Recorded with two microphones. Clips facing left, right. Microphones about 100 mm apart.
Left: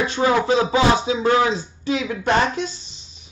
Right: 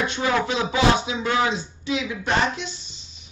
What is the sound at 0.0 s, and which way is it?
Speech, 35° left (ahead or behind).